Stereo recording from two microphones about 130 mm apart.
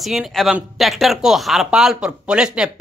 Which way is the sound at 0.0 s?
Centre (ahead or behind).